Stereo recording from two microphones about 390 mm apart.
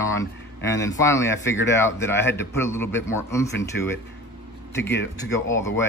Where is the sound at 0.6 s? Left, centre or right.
Left.